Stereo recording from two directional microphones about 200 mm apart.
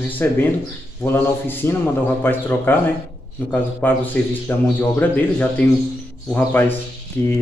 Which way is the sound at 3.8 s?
10° left (ahead or behind).